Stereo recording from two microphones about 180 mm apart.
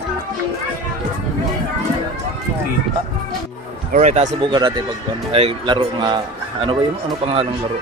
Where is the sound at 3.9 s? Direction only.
40° right (ahead or behind).